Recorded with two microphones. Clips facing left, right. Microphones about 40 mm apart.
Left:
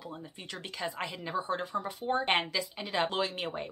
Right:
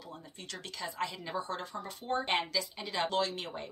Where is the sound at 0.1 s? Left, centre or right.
Left.